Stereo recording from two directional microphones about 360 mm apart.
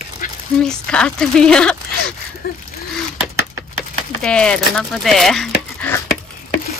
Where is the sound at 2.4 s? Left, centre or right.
Left.